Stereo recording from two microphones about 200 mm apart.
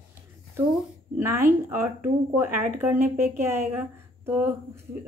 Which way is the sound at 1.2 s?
10° right (ahead or behind).